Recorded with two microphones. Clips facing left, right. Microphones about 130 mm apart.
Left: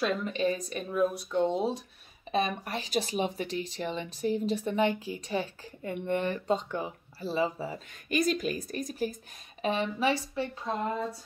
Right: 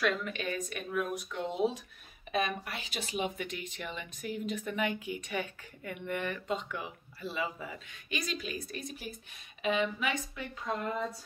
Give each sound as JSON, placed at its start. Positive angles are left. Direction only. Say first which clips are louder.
{"t": 0.0, "sound": "speech", "louder": "left 4 dB", "side_deg": 30}
{"t": 8.1, "sound": "a woman's voice", "louder": "left 9 dB", "side_deg": 45}